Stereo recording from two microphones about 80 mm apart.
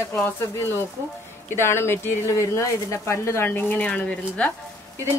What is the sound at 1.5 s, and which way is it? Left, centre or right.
Speech, left.